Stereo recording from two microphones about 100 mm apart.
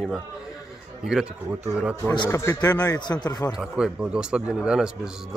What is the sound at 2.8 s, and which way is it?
Speech, 45° left (ahead or behind).